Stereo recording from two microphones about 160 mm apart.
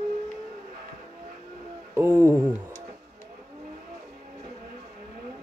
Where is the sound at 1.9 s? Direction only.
15° right (ahead or behind).